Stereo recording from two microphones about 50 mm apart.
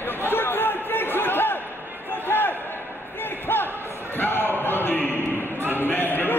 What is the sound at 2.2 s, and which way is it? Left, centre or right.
Basketball bounce, left.